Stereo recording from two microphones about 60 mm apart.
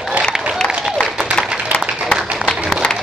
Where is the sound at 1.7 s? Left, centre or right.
Centre.